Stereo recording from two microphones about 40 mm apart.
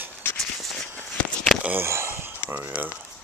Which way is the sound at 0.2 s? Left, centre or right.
Left.